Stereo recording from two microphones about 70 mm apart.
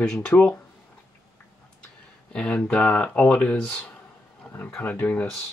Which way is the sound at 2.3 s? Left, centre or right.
Centre.